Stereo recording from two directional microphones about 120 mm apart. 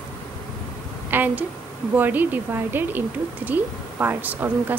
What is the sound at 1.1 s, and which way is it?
A woman's voice, 15° right (ahead or behind).